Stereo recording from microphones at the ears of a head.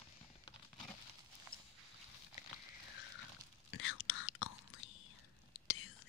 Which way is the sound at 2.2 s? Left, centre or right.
Left.